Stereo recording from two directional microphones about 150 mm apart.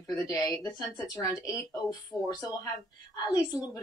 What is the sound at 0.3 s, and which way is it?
A woman's voice, 25° left (ahead or behind).